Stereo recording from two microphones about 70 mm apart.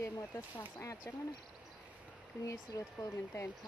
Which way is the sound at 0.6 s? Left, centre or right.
Left.